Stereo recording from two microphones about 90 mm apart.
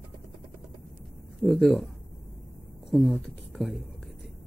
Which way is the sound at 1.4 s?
15° left (ahead or behind).